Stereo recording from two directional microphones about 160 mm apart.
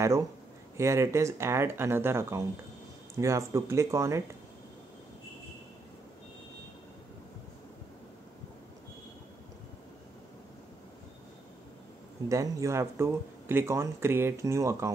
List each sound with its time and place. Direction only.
0.7 s speech: 15° right (ahead or behind)
12.3 s speech: 20° right (ahead or behind)